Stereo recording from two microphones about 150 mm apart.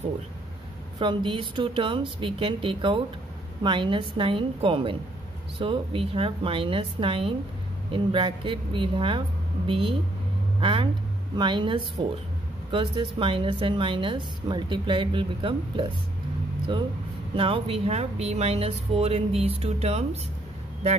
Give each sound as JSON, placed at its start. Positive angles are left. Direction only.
{"t": 0.9, "sound": "a woman's voice", "side_deg": -30}
{"t": 17.4, "sound": "speech", "side_deg": -40}